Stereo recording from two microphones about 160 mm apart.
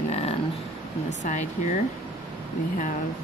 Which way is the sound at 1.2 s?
50° left (ahead or behind).